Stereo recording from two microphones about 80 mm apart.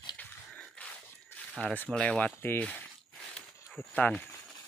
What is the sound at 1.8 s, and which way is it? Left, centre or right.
Speech, centre.